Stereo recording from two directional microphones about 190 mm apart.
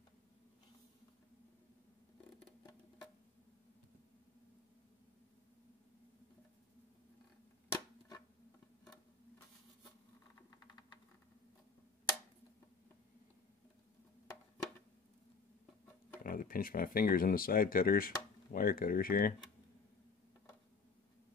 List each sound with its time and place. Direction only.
16.3 s speech: 50° left (ahead or behind)